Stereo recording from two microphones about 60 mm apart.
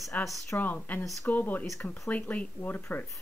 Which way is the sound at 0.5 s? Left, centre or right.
Left.